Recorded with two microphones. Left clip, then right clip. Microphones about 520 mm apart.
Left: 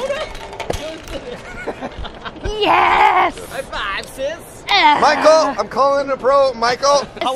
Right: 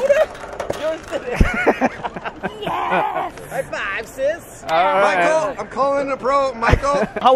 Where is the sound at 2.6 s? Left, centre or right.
Left.